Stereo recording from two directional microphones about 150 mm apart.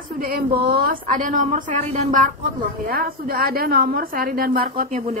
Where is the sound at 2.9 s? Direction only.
80° right.